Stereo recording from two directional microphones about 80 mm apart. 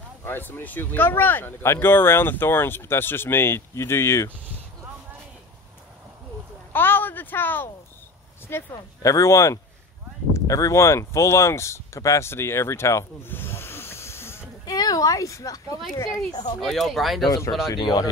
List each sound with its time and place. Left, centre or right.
0.2 s speech: left
6.7 s a sound: left
8.5 s speech: left
9.0 s speech: left
14.7 s a sound: left
16.3 s speech: left
16.6 s speech: centre
17.7 s speech: left